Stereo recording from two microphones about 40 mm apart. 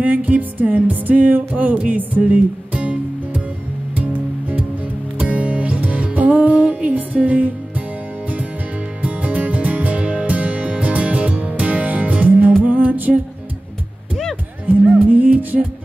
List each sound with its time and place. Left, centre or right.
0.0 s music: right
5.2 s music: right
9.0 s music: right
14.7 s music: right